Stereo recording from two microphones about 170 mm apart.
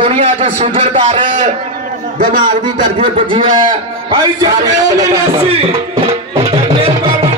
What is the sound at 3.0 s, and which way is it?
A man's voice, 30° right (ahead or behind).